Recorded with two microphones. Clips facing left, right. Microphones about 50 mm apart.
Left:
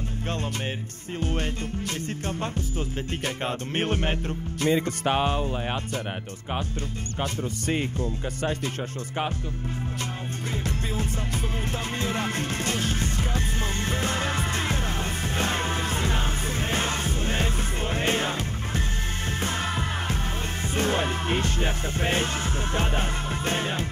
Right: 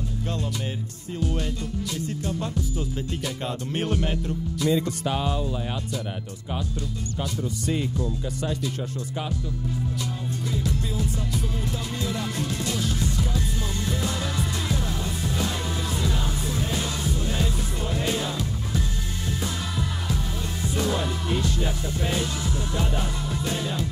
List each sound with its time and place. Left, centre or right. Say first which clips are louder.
1.2 s speech: even; left
3.3 s music: left 1 dB; left
7.2 s speech: left 1 dB; left
12.0 s music: left 1 dB; left
19.4 s music: left 4 dB; left